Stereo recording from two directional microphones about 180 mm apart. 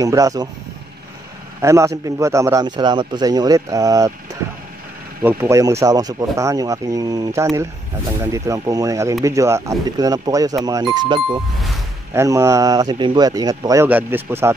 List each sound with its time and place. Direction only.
0.0 s a man's voice: 20° right (ahead or behind)
1.6 s a man's voice: 15° right (ahead or behind)